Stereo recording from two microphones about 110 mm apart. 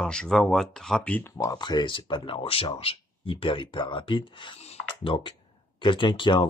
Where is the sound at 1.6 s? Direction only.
40° left (ahead or behind).